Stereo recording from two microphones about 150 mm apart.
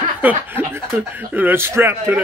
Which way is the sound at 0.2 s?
10° right (ahead or behind).